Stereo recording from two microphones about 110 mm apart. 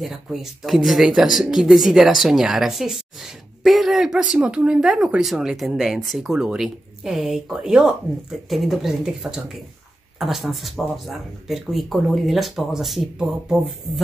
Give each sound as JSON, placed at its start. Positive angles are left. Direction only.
{"t": 0.0, "sound": "speech", "side_deg": -5}